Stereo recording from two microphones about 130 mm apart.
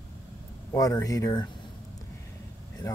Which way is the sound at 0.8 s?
25° left (ahead or behind).